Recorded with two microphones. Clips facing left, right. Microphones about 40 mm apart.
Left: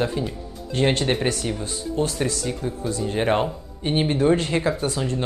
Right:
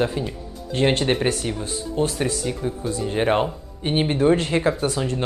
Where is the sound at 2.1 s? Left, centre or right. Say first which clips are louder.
Right 1 dB; right.